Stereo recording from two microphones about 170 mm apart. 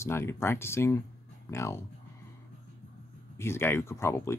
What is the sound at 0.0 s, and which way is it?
Speech, 15° left (ahead or behind).